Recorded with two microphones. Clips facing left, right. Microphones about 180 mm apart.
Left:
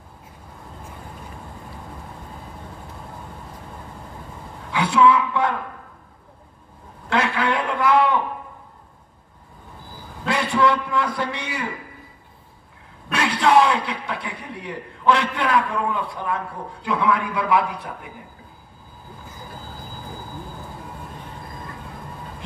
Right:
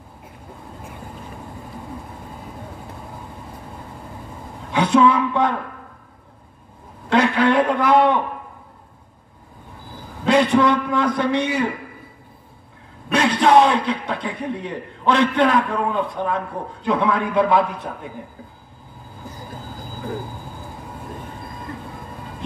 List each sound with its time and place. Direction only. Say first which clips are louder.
4.6 s a man's voice: right 2 dB; 20° right (ahead or behind)
7.1 s a sound: right 5 dB; 20° right (ahead or behind)
10.2 s a man's voice: right 5 dB; 20° right (ahead or behind)
13.1 s a man's voice: right 3 dB; 20° right (ahead or behind)